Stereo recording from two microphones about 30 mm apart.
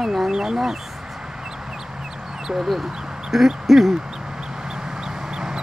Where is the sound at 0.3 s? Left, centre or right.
Right.